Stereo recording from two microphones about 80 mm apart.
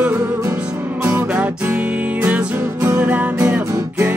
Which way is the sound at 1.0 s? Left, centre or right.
Centre.